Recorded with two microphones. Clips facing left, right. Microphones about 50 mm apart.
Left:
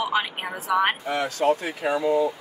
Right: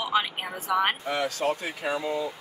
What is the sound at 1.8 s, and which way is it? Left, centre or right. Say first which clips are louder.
Speech: left 6 dB; centre.